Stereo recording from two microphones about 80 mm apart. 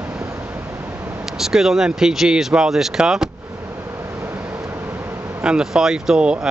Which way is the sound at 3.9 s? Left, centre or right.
Right.